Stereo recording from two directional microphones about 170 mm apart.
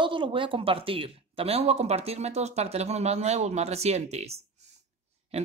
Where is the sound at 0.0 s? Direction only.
30° right (ahead or behind).